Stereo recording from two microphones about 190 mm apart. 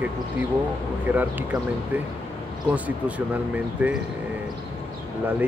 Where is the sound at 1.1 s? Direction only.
10° right (ahead or behind).